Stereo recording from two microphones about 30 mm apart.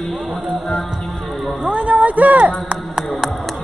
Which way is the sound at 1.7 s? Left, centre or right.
Right.